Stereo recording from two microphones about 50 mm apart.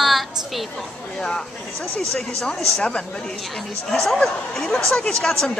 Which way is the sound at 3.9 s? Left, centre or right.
Centre.